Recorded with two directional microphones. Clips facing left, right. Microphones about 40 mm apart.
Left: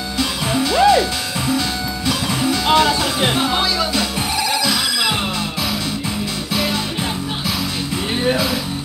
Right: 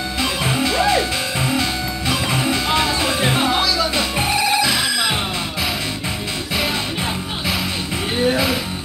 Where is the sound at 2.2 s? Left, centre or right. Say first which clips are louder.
Left 2 dB; right.